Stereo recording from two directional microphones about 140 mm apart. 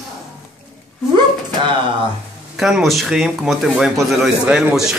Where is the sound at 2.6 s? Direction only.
5° right (ahead or behind).